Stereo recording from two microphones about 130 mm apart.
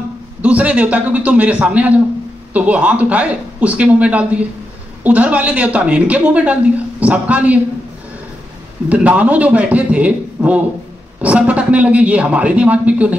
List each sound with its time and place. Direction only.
0.4 s a woman's voice: 10° right (ahead or behind)
8.8 s a woman's voice: 10° right (ahead or behind)